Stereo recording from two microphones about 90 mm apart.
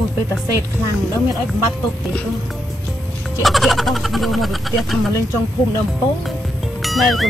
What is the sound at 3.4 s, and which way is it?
Speech, centre (ahead or behind).